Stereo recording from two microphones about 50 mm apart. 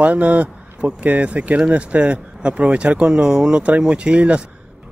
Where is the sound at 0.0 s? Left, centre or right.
Right.